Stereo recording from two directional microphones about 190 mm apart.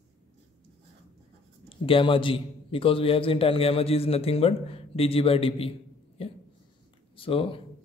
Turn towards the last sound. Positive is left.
turn(degrees=30)  # may be behind; listen again after turning